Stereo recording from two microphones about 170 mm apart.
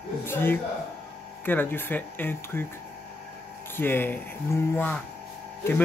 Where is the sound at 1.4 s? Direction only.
10° left (ahead or behind).